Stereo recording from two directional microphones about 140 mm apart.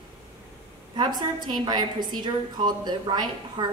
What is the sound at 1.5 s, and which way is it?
A woman's voice, 30° right (ahead or behind).